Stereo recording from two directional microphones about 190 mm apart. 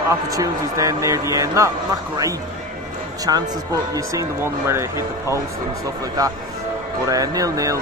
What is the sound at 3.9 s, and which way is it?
Speech, 15° right (ahead or behind).